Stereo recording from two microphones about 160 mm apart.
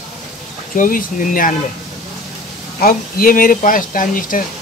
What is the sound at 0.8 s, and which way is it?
Speech, 60° left (ahead or behind).